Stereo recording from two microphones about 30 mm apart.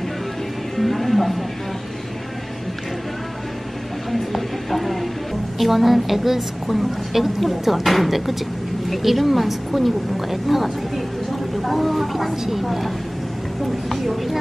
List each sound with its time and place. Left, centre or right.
0.7 s music: centre
4.1 s a sound: centre
5.6 s a woman's voice: centre